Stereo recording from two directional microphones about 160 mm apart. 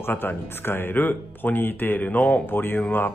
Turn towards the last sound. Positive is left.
turn(degrees=10)  # may be behind; listen again after turning